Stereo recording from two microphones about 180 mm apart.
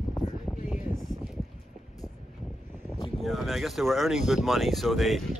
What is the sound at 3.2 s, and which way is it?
Speech, centre (ahead or behind).